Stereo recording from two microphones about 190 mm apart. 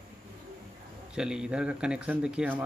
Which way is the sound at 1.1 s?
5° right (ahead or behind).